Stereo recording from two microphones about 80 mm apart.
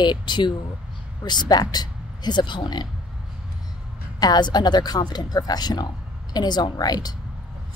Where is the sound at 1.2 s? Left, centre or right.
Left.